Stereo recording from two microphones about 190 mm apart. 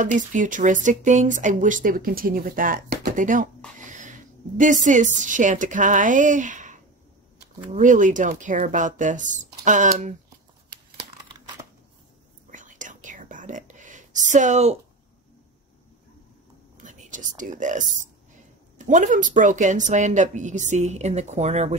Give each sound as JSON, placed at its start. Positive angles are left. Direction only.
{"t": 0.0, "sound": "a woman's voice", "side_deg": -40}
{"t": 12.4, "sound": "whispering", "side_deg": -40}
{"t": 16.7, "sound": "speech", "side_deg": -40}